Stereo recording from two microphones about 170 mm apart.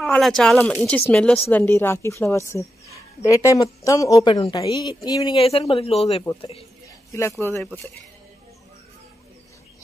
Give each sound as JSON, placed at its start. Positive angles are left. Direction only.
{"t": 0.0, "sound": "a man's voice", "side_deg": 5}
{"t": 7.1, "sound": "a man's voice", "side_deg": 15}